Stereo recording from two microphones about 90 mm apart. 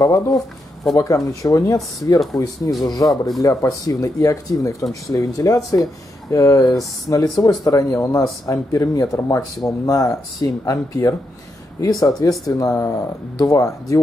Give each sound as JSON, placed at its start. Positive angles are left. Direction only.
{"t": 0.0, "sound": "speech", "side_deg": 40}
{"t": 12.2, "sound": "speech", "side_deg": 40}